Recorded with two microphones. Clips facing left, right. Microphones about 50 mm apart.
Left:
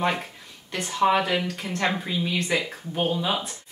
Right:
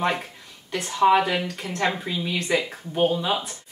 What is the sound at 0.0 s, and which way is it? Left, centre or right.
A woman's voice, centre.